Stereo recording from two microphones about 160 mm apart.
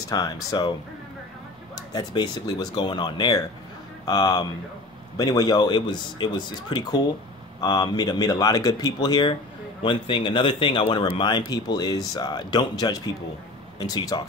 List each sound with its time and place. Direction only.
0.0 s speech: 25° left (ahead or behind)
1.8 s speech: 25° left (ahead or behind)